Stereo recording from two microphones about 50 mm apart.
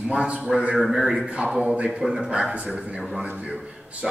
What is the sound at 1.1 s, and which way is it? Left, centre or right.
Speech, centre.